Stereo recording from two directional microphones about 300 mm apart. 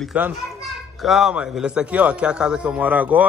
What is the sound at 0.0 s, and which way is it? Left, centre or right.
A man's voice, centre.